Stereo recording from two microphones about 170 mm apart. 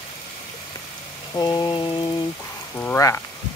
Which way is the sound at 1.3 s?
25° left (ahead or behind).